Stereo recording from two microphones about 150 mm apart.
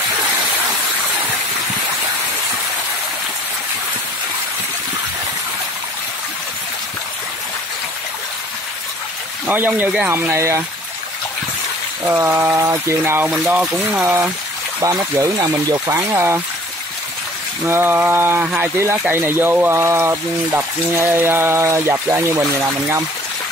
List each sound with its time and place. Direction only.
9.5 s speech: 10° right (ahead or behind)
12.1 s speech: 15° right (ahead or behind)
14.8 s speech: 20° right (ahead or behind)
17.6 s speech: 15° right (ahead or behind)